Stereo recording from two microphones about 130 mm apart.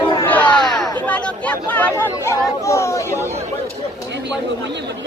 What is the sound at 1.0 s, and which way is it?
Chatter, 10° left (ahead or behind).